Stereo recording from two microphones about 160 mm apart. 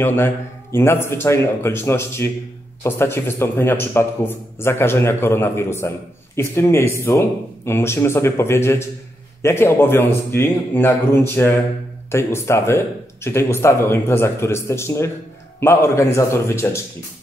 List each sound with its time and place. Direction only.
0.0 s a man's voice: 15° left (ahead or behind)